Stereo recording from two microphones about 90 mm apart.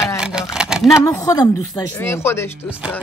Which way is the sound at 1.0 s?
35° left (ahead or behind).